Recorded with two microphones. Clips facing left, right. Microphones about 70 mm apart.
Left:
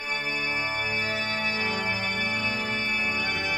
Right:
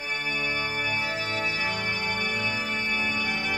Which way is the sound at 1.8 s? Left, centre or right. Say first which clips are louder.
Even; centre.